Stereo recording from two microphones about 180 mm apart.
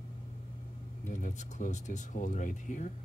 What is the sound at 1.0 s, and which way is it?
Speech, 45° left (ahead or behind).